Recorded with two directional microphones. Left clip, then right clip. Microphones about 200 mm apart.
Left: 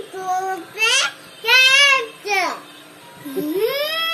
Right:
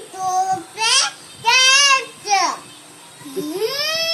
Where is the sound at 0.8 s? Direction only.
20° right (ahead or behind).